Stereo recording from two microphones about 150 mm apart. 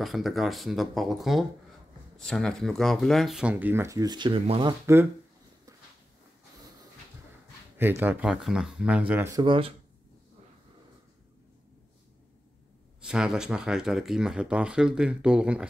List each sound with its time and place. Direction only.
0.0 s speech: centre (ahead or behind); by 4.7 s 35° right (ahead or behind)
7.7 s speech: 15° right (ahead or behind)
9.3 s speech: 30° right (ahead or behind)
13.0 s speech: 5° right (ahead or behind)